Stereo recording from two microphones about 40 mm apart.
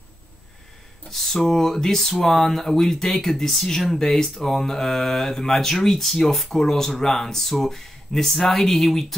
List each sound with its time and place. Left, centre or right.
1.1 s speech: centre